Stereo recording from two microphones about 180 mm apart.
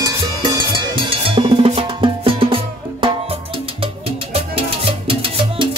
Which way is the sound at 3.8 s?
30° right (ahead or behind).